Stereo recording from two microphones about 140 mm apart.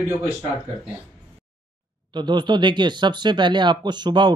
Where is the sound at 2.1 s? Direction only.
30° right (ahead or behind).